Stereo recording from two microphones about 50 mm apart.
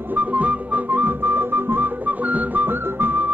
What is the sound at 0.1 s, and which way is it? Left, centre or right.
Whistling, right.